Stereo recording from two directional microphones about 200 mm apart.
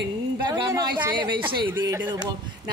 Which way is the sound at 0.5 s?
20° right (ahead or behind).